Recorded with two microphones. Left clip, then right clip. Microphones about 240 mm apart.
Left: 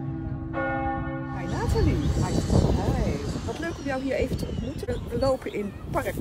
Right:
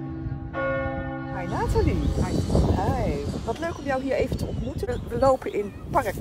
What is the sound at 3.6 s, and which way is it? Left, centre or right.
Speech, centre.